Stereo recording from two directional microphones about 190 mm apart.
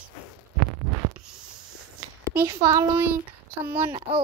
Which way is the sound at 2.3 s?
15° right (ahead or behind).